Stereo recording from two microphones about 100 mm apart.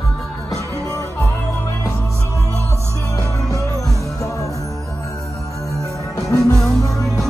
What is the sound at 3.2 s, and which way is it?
Music, 35° left (ahead or behind).